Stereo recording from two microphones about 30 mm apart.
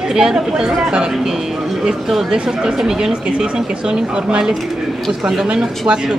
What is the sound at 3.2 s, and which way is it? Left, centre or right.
Speech, right.